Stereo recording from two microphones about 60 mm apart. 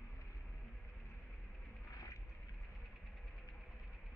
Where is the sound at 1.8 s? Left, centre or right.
Left.